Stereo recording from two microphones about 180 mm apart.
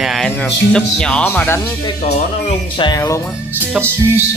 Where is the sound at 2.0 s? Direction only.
35° left (ahead or behind); by 3.2 s 20° left (ahead or behind).